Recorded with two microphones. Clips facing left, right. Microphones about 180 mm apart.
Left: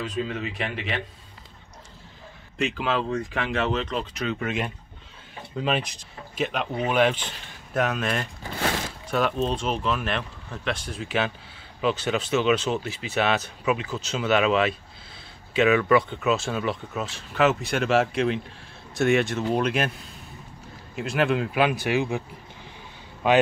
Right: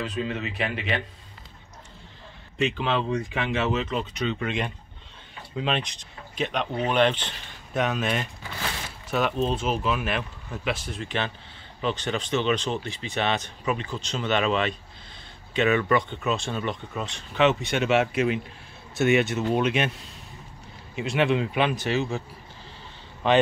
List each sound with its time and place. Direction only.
0.1 s speech: centre (ahead or behind)
2.5 s speech: centre (ahead or behind)
23.2 s a man's voice: 10° left (ahead or behind)